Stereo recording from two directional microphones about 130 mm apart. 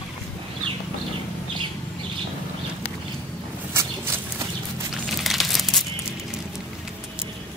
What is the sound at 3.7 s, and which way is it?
Walk, 25° right (ahead or behind).